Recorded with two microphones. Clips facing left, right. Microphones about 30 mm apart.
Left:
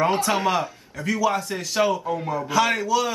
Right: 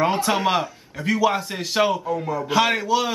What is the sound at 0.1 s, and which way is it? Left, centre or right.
Speech, centre.